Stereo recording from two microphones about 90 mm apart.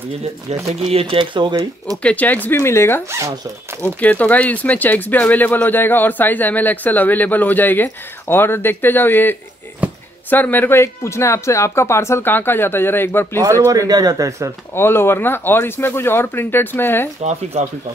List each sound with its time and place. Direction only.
0.9 s speech: 75° right (ahead or behind)
2.0 s speech: 15° left (ahead or behind)
3.1 s speech: 30° right (ahead or behind)
3.8 s speech: 15° left (ahead or behind)
13.7 s speech: 40° right (ahead or behind)
14.7 s speech: 25° left (ahead or behind)